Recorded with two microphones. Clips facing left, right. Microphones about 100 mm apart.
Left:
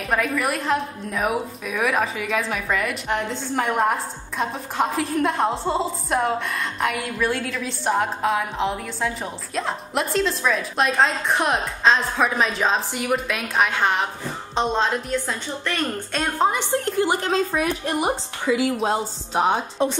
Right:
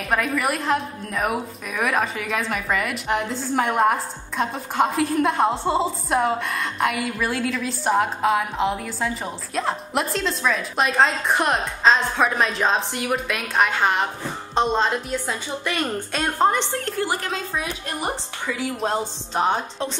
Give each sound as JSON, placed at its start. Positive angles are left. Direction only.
{"t": 0.1, "sound": "a woman's voice", "side_deg": 0}
{"t": 16.7, "sound": "a woman's voice", "side_deg": 20}
{"t": 18.8, "sound": "a woman's voice", "side_deg": 5}